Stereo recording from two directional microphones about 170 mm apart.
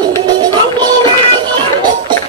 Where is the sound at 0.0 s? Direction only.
25° right (ahead or behind).